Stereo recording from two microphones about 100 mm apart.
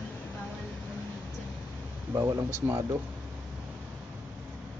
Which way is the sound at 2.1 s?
25° right (ahead or behind).